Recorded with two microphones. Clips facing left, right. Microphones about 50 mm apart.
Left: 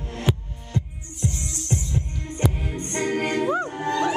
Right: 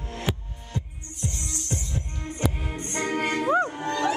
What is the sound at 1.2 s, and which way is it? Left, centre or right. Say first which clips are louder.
Music: left 4 dB; centre.